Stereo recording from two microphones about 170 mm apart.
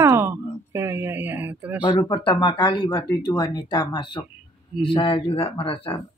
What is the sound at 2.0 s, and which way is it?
Speech, 25° left (ahead or behind).